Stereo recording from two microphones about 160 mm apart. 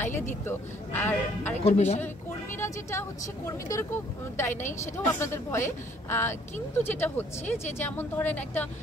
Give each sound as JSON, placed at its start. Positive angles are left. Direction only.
{"t": 0.5, "sound": "speech", "side_deg": 10}
{"t": 1.6, "sound": "speech", "side_deg": 45}
{"t": 2.5, "sound": "speech", "side_deg": 15}